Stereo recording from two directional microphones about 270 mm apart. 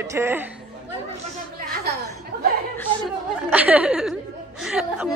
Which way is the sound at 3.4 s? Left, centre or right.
Centre.